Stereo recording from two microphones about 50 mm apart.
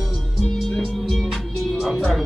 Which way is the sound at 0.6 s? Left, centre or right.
Centre.